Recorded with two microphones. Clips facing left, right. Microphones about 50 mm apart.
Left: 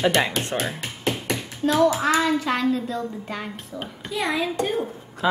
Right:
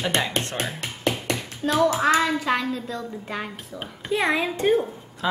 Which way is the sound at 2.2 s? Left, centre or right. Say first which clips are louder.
Left 1 dB; centre.